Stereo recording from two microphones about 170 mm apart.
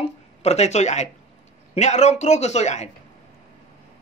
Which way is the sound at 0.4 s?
40° left (ahead or behind).